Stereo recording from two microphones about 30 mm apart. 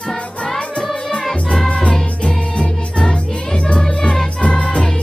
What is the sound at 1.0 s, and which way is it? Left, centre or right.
Music, left.